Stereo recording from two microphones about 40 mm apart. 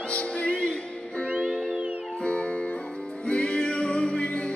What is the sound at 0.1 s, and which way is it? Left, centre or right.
Music, left.